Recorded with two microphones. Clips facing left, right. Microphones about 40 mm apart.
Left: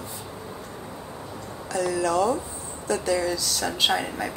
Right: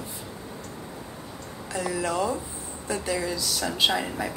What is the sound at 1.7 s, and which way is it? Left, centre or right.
Speech, right.